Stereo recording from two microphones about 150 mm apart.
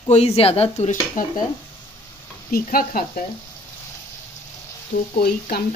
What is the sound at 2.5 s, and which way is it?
Stir, 75° left (ahead or behind).